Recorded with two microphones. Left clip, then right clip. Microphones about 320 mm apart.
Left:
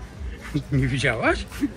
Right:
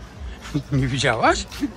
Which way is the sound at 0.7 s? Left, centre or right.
Centre.